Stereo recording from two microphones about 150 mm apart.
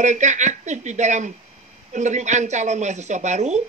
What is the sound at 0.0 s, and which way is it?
A woman's voice, 55° right (ahead or behind).